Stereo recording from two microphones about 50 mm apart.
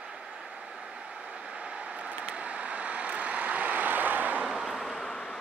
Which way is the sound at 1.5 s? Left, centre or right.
Right.